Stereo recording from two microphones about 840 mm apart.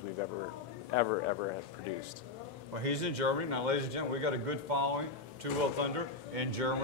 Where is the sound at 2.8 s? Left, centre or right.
Right.